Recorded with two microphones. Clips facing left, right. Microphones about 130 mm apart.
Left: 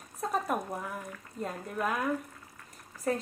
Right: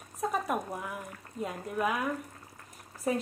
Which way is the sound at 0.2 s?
5° right (ahead or behind).